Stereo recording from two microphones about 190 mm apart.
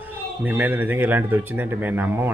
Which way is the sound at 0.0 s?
10° right (ahead or behind).